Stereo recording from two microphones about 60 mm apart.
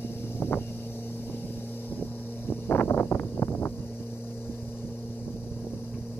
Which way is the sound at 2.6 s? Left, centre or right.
Left.